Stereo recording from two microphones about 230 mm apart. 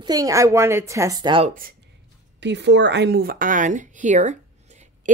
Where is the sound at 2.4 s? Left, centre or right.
Right.